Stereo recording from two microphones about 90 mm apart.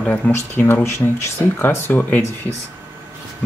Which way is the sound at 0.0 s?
15° left (ahead or behind).